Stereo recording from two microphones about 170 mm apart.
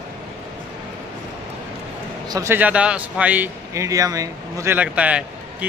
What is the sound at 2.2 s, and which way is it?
A man's voice, 20° right (ahead or behind).